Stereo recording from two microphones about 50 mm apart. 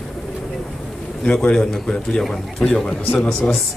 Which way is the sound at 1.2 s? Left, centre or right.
Centre.